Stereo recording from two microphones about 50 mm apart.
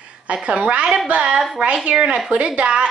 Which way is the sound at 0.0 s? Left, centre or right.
Right.